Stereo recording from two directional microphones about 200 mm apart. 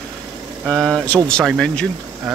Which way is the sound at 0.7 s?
5° left (ahead or behind).